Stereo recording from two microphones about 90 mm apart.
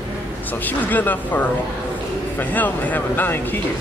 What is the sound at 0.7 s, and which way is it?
Speech, 20° left (ahead or behind).